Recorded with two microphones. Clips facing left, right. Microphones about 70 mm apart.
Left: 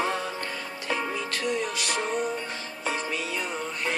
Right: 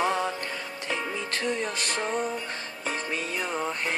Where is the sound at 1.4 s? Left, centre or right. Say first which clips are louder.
Left 1 dB; right.